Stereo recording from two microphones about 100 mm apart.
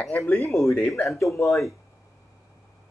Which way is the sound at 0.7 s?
15° left (ahead or behind).